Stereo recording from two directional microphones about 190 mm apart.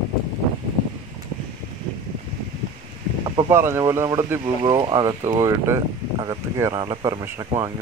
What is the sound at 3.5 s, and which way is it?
Speech, 15° right (ahead or behind).